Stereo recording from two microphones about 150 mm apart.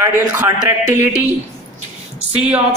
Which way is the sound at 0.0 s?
20° right (ahead or behind).